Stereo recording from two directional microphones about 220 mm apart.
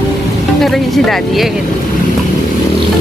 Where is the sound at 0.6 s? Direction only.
Centre (ahead or behind).